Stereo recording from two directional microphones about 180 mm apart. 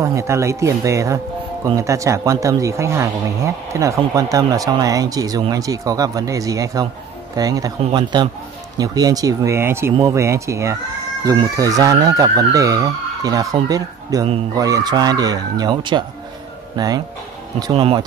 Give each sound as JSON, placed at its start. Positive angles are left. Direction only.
{"t": 0.0, "sound": "speech", "side_deg": -15}